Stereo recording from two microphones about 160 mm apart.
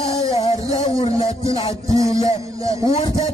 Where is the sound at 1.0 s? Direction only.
35° left (ahead or behind).